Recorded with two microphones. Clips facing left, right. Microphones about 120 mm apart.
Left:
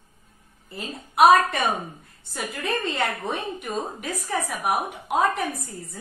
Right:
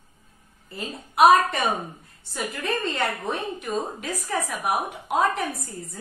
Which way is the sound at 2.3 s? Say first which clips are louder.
Right 1 dB; centre (ahead or behind).